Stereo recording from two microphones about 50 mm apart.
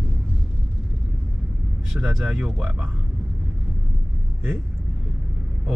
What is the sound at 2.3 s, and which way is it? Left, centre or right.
Speech, centre.